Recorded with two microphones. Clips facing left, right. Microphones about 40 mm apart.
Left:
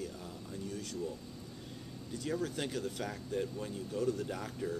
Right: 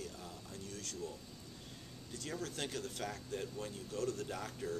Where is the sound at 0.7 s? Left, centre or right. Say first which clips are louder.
Left 5 dB; centre.